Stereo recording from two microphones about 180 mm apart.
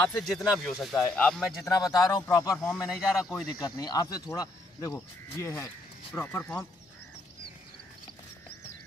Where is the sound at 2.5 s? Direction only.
5° left (ahead or behind).